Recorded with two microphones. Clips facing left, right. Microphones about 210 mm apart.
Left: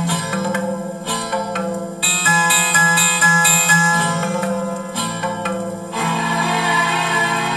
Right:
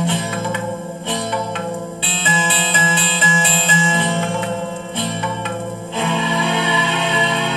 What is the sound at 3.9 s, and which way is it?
Music, 25° right (ahead or behind).